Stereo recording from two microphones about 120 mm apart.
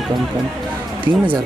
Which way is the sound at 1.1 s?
15° right (ahead or behind).